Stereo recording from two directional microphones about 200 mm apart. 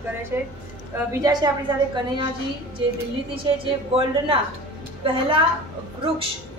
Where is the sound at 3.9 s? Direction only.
30° right (ahead or behind).